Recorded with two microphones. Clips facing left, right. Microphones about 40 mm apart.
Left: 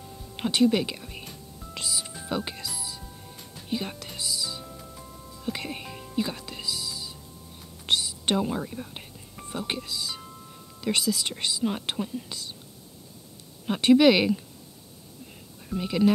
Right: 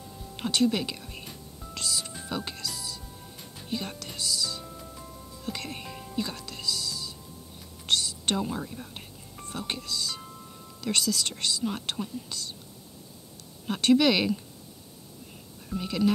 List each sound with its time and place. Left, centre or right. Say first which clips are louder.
0.4 s speech: left 3 dB; centre
1.7 s music: even; centre
4.6 s music: even; centre
5.5 s music: left 3 dB; centre
7.8 s whispering: left 1 dB; centre
9.4 s speech: left 3 dB; centre
13.7 s speech: left 4 dB; centre
15.7 s speech: left 3 dB; centre